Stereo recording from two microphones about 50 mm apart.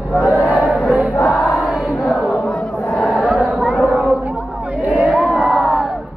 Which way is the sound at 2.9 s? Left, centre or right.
Left.